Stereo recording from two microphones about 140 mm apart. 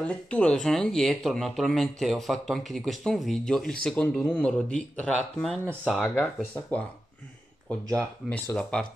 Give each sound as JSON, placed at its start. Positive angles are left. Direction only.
{"t": 0.0, "sound": "speech", "side_deg": 10}
{"t": 8.3, "sound": "speech", "side_deg": 10}